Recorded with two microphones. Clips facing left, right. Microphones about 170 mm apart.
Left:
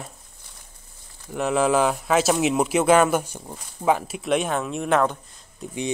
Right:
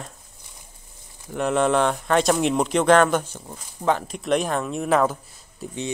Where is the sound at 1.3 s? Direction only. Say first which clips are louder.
Even; centre (ahead or behind).